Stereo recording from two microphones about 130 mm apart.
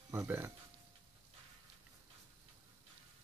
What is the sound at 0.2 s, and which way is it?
Speech, 15° right (ahead or behind).